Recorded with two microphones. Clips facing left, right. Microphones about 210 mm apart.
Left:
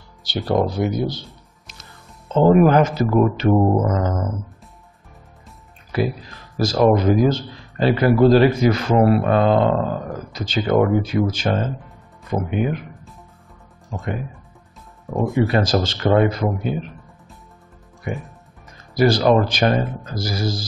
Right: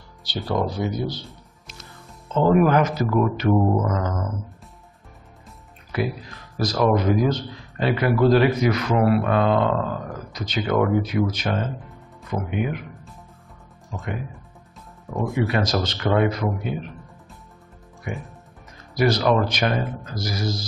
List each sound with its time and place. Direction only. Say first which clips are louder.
0.5 s speech: left 5 dB; 55° left (ahead or behind)
2.2 s a man's voice: left 4 dB; 30° left (ahead or behind)
5.9 s a man's voice: left 4 dB; 30° left (ahead or behind)
15.4 s a man's voice: left 4 dB; 30° left (ahead or behind)
18.9 s a man's voice: left 4 dB; 30° left (ahead or behind)